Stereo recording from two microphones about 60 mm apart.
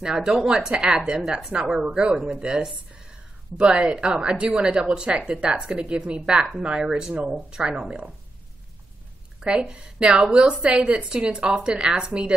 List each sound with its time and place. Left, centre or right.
0.0 s a woman's voice: centre
9.4 s a woman's voice: centre